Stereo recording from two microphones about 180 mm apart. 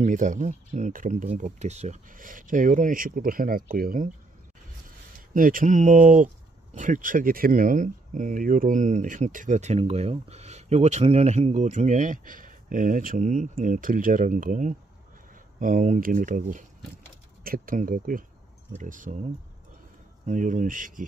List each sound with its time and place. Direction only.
0.0 s speech: 45° right (ahead or behind)
5.3 s speech: 50° right (ahead or behind)
20.2 s speech: 45° right (ahead or behind)